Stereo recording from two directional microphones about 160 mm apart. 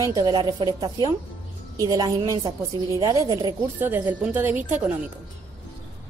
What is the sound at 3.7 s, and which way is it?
A woman's voice, 10° right (ahead or behind).